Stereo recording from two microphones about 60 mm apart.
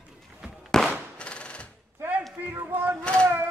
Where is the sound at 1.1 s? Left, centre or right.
Centre.